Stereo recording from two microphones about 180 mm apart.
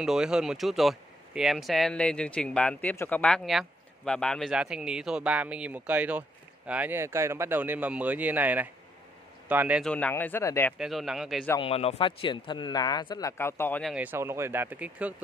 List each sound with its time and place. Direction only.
0.0 s speech: 5° right (ahead or behind)
9.8 s speech: 5° left (ahead or behind)
10.8 s speech: centre (ahead or behind)
11.6 s speech: 35° left (ahead or behind); by 13.8 s 10° left (ahead or behind)
13.8 s speech: 10° right (ahead or behind)